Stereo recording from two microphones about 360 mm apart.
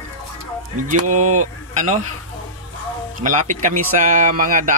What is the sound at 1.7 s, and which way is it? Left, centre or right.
Speech, centre.